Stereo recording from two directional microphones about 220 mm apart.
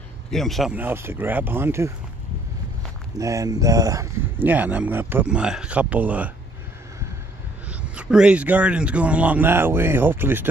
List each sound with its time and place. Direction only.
0.3 s speech: centre (ahead or behind)
3.2 s speech: 15° right (ahead or behind)
7.8 s speech: 5° right (ahead or behind)